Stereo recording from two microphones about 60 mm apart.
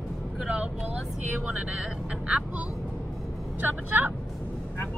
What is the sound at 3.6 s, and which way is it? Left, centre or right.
Speech, right.